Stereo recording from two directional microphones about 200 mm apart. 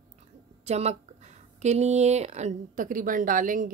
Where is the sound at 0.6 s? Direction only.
35° right (ahead or behind).